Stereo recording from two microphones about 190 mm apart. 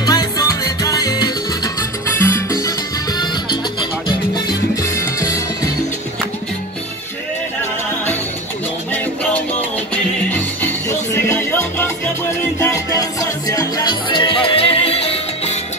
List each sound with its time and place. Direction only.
0.0 s music: 20° left (ahead or behind)
8.9 s music: 5° left (ahead or behind); by 15.5 s 30° left (ahead or behind)